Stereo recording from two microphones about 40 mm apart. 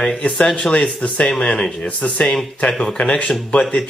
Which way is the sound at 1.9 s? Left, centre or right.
Left.